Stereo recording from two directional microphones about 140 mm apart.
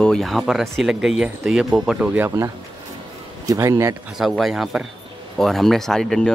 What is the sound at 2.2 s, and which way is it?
A man's voice, 20° right (ahead or behind).